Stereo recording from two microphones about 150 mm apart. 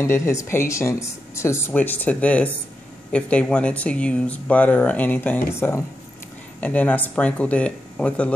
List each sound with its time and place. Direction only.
0.0 s speech: 20° left (ahead or behind)